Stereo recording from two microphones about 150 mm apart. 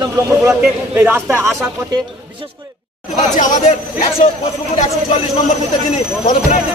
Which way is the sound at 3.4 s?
50° left (ahead or behind).